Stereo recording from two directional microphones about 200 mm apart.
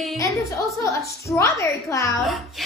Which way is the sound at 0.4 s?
15° left (ahead or behind).